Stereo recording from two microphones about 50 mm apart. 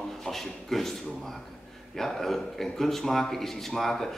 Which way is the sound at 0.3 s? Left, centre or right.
Centre.